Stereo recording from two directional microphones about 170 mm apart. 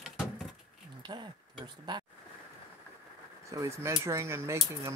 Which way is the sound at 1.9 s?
25° right (ahead or behind).